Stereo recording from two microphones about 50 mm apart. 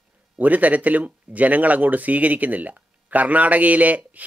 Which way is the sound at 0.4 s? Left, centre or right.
Right.